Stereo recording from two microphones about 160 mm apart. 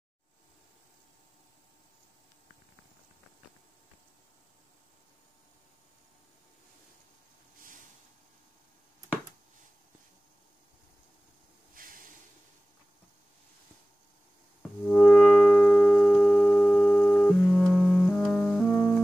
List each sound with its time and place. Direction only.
11.7 s snort: 60° right (ahead or behind)
14.8 s music: 5° left (ahead or behind)
18.1 s music: 10° left (ahead or behind)